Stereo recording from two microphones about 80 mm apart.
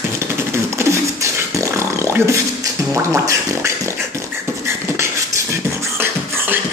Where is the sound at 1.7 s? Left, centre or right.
Right.